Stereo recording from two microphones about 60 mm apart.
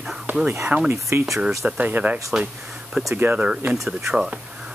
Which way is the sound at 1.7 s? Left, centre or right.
Right.